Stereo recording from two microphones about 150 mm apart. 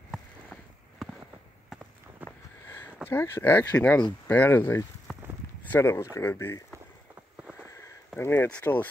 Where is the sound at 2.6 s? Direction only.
15° left (ahead or behind).